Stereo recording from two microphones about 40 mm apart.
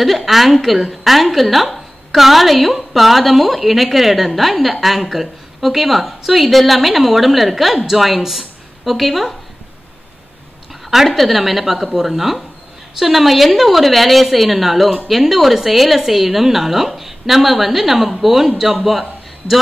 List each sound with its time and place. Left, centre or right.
0.0 s a woman's voice: centre
10.9 s a woman's voice: centre
18.9 s a sound: centre